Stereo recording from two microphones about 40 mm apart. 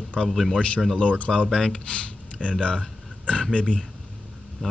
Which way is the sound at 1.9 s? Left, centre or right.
Left.